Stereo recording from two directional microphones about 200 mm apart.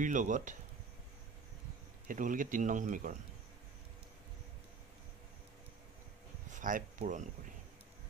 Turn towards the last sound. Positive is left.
turn(degrees=-40)  # may be behind; listen again after turning